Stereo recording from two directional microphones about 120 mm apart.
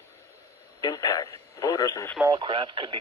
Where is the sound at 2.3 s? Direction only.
45° right (ahead or behind).